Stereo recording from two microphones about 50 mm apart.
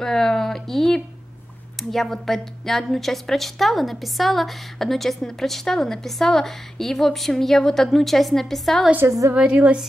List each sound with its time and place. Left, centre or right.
0.0 s a sound: centre
1.8 s a woman's voice: centre
9.0 s a woman's voice: right
9.3 s a woman's voice: right